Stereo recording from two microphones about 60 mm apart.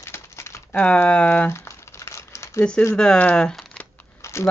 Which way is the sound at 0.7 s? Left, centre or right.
Left.